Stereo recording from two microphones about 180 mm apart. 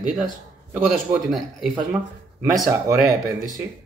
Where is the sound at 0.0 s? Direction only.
Centre (ahead or behind).